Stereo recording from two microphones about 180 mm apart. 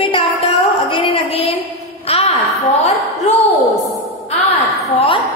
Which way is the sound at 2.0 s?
35° left (ahead or behind).